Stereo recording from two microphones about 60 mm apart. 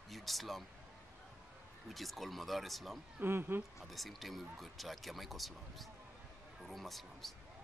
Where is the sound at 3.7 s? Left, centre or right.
Centre.